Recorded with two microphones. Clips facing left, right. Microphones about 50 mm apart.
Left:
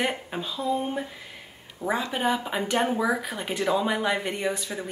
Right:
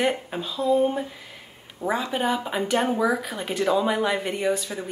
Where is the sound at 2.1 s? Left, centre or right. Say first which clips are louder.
Right 1 dB; centre.